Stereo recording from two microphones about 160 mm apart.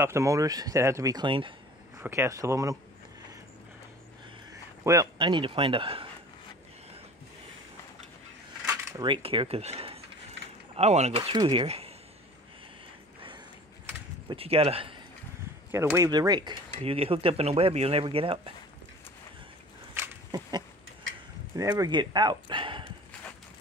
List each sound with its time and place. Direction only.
0.0 s speech: 20° right (ahead or behind)
2.0 s speech: 15° right (ahead or behind)
4.8 s speech: 25° right (ahead or behind)
9.0 s speech: 35° right (ahead or behind)
14.3 s speech: 35° right (ahead or behind)
15.7 s speech: 15° right (ahead or behind); by 18.5 s 35° right (ahead or behind)
19.9 s a sound: 20° right (ahead or behind)
21.5 s speech: 25° right (ahead or behind)